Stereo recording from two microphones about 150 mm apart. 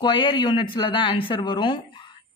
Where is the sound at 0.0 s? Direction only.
35° left (ahead or behind).